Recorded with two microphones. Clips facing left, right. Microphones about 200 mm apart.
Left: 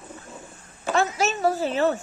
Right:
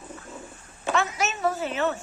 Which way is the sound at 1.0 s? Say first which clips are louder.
Left 4 dB; 30° left (ahead or behind).